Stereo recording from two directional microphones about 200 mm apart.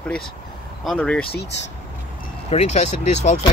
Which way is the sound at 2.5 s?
35° left (ahead or behind).